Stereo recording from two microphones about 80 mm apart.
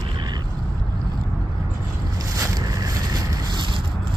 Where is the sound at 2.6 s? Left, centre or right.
Right.